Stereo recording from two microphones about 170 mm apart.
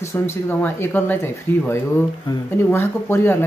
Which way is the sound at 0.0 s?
15° left (ahead or behind).